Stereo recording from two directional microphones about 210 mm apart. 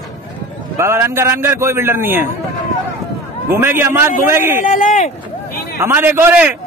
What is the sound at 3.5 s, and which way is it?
A man's voice, 10° right (ahead or behind).